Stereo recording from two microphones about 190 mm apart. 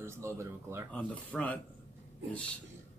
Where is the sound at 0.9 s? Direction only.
10° left (ahead or behind).